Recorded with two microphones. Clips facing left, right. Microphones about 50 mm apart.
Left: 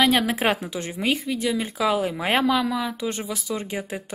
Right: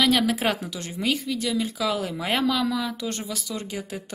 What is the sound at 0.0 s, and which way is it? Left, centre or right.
A woman's voice, left.